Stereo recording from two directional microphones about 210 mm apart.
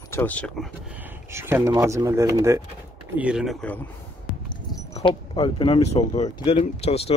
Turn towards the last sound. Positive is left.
turn(degrees=30)  # may be behind; listen again after turning